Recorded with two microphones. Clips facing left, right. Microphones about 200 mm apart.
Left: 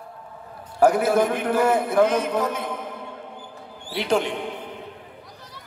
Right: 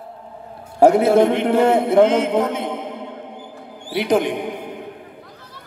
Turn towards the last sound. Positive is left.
turn(degrees=-15)  # may be behind; listen again after turning